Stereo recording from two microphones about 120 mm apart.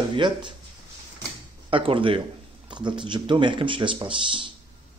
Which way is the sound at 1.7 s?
45° right (ahead or behind).